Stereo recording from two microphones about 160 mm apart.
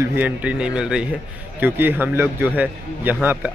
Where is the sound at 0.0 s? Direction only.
10° right (ahead or behind).